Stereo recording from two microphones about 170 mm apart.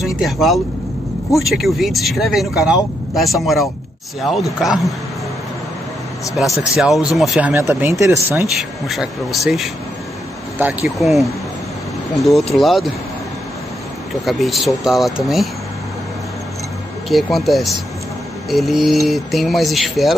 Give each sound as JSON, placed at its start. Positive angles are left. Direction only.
{"t": 0.0, "sound": "speech", "side_deg": 0}
{"t": 6.3, "sound": "speech", "side_deg": 0}
{"t": 8.5, "sound": "speech", "side_deg": 0}
{"t": 14.2, "sound": "speech", "side_deg": 0}
{"t": 17.1, "sound": "speech", "side_deg": 0}